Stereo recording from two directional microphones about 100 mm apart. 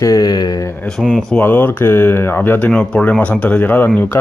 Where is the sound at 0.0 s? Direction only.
40° left (ahead or behind).